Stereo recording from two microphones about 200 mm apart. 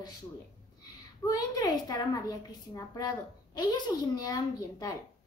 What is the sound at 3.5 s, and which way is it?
Speech, 20° left (ahead or behind).